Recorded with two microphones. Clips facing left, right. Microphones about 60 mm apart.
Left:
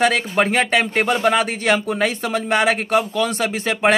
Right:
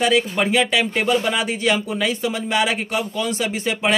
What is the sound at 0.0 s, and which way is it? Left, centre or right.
Speech, left.